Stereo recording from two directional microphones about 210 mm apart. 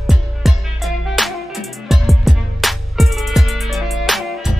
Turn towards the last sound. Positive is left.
turn(degrees=0)  # may be behind; listen again after turning